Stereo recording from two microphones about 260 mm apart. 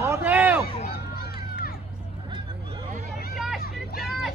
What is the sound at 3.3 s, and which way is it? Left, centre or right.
Hubbub, centre.